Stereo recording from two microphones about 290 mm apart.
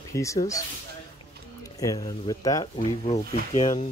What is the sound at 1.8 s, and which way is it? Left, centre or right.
Speech, centre.